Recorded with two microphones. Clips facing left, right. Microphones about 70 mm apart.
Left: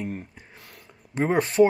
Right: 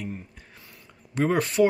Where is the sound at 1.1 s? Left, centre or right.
Left.